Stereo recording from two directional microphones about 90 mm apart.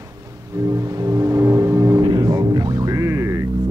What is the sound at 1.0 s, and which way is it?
Music, 40° right (ahead or behind).